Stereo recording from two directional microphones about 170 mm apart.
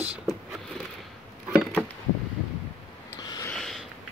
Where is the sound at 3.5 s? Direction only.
Centre (ahead or behind).